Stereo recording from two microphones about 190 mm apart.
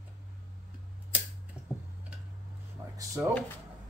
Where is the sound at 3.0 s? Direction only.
15° right (ahead or behind).